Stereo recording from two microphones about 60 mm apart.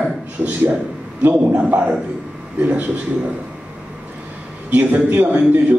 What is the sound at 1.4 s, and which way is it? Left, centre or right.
A man's voice, right.